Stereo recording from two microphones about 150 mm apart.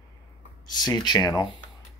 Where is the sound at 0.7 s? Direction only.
30° left (ahead or behind).